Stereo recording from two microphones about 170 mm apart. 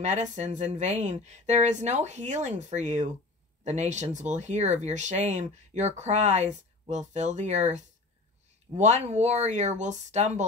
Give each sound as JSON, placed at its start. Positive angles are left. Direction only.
{"t": 0.0, "sound": "speech", "side_deg": -45}